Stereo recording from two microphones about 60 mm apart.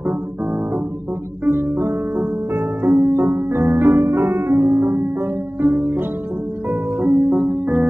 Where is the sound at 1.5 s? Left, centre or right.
Right.